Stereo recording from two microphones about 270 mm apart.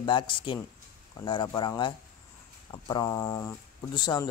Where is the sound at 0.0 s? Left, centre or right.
Centre.